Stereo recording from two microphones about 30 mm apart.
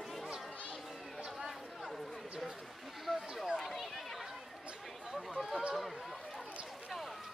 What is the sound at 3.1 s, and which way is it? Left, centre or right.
Speech, centre.